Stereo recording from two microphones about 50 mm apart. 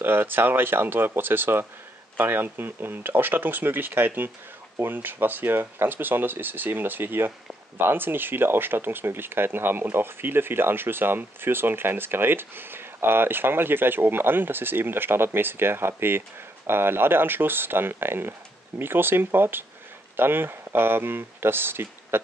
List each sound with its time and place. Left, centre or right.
0.0 s speech: right